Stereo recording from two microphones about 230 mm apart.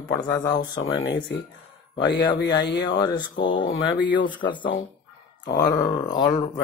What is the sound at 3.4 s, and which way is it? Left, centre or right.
Speech, left.